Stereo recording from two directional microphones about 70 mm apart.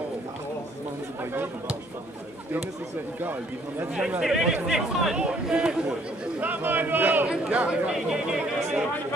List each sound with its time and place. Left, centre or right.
4.2 s speech: centre
6.4 s speech: right
7.9 s speech: centre